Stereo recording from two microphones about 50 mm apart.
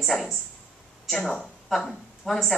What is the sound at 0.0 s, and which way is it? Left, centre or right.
Speech, centre.